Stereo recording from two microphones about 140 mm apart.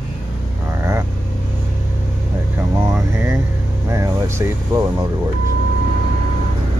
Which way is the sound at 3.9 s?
20° right (ahead or behind).